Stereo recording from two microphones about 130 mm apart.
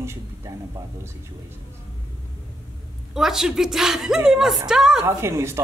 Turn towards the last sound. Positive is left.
turn(degrees=-20)  # may be behind; listen again after turning